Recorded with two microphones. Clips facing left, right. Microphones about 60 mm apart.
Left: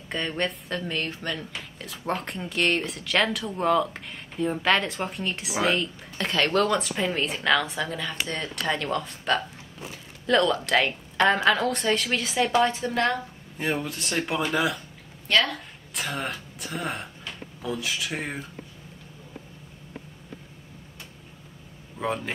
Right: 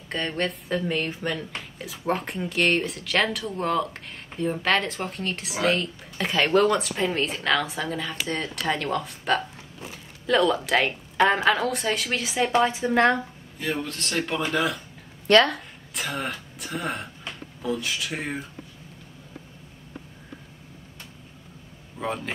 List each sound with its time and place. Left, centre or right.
0.1 s a woman's voice: centre
12.9 s speech: right
13.7 s speech: centre
15.2 s speech: right
15.9 s speech: centre
21.9 s speech: centre